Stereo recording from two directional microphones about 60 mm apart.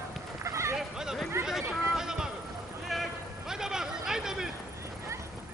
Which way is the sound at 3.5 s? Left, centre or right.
Centre.